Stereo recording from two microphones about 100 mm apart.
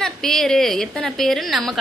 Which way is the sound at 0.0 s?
5° left (ahead or behind).